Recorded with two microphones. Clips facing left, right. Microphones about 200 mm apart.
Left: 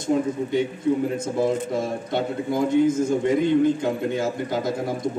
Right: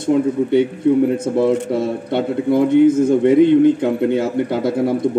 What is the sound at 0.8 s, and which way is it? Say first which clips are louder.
A man's voice: right 8 dB; 60° right (ahead or behind).